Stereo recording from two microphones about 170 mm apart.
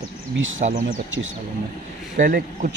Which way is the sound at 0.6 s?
45° right (ahead or behind).